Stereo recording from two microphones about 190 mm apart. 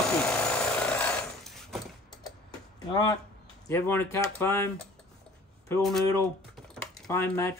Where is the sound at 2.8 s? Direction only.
20° left (ahead or behind).